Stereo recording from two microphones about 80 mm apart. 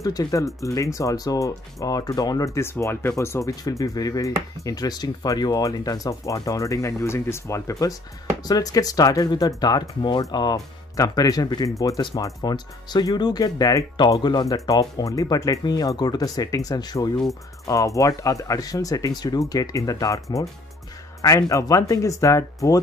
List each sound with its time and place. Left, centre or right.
0.0 s speech: left
8.5 s speech: left
12.2 s speech: left
12.5 s speech: left
17.6 s speech: left